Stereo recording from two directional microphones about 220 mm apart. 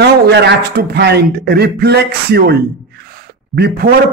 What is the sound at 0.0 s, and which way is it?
Speech, 50° right (ahead or behind).